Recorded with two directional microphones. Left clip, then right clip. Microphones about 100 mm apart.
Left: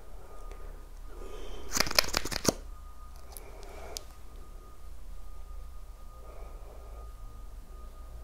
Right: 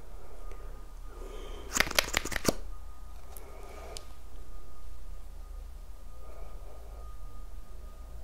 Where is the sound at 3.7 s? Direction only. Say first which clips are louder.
Left 2 dB; 20° left (ahead or behind).